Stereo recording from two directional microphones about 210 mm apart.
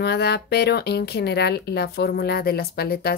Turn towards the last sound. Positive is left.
turn(degrees=50)  # may be behind; listen again after turning